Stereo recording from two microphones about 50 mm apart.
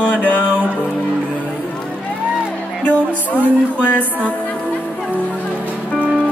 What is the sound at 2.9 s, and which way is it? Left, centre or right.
Music, left.